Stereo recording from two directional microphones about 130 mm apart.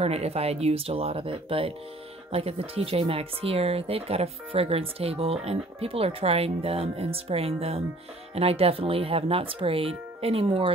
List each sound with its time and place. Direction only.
0.0 s speech: 50° right (ahead or behind)